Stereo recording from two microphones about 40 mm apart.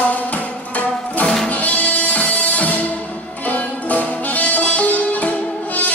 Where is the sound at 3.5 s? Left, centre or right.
Left.